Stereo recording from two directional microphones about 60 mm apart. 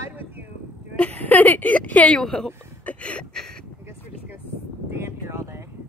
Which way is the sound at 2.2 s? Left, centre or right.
Centre.